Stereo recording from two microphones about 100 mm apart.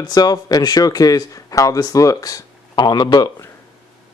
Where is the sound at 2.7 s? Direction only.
45° left (ahead or behind).